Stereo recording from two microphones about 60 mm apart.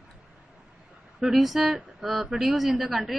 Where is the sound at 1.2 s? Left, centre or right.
Centre.